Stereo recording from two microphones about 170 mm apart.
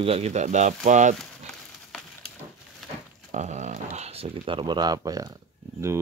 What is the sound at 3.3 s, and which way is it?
Speech, 45° right (ahead or behind).